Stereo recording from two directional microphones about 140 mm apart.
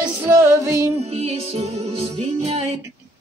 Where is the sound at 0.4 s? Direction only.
20° right (ahead or behind).